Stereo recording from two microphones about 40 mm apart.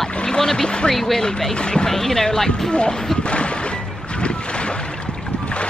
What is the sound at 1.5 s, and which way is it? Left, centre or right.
Speech, left.